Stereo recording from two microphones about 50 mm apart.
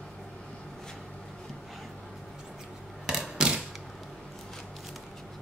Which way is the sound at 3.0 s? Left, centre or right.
Centre.